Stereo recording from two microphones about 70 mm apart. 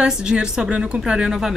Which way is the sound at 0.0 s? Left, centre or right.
Centre.